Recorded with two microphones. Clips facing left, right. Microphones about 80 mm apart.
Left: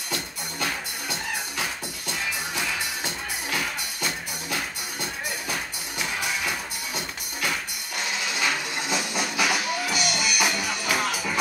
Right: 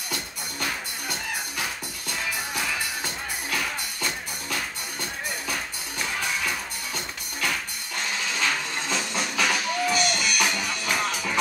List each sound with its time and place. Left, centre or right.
2.0 s music: left
8.4 s music: centre